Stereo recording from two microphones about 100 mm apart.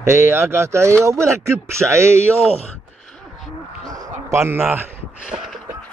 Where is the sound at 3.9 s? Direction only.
35° right (ahead or behind).